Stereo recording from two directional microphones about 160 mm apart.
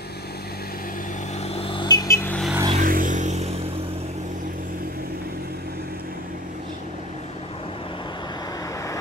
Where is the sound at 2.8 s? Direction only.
55° right (ahead or behind).